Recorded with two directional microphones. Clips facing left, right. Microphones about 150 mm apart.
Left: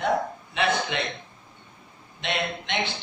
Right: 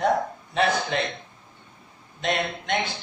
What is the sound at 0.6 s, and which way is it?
Speech, 40° right (ahead or behind).